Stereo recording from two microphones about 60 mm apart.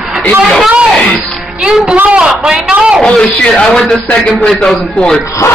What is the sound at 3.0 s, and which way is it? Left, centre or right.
Speech, centre.